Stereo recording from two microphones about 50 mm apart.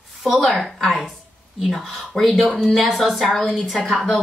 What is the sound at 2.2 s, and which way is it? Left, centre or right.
A woman's voice, centre.